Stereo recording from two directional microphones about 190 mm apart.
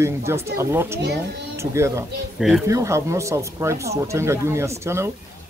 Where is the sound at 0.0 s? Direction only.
15° right (ahead or behind).